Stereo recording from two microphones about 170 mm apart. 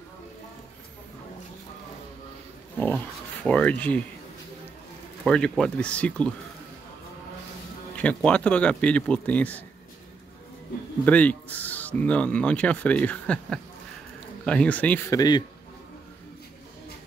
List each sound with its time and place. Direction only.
3.4 s speech: 10° left (ahead or behind)
5.2 s speech: 5° left (ahead or behind)
8.0 s speech: 10° left (ahead or behind)
11.1 s speech: 10° left (ahead or behind)
15.0 s a man's voice: 25° left (ahead or behind)